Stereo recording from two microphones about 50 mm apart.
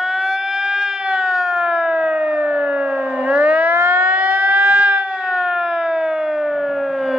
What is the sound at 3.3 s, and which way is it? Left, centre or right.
Siren, right.